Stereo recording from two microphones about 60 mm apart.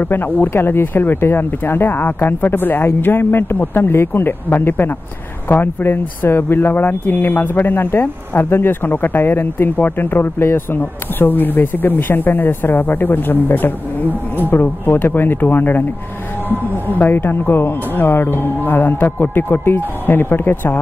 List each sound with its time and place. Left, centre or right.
0.0 s speech: left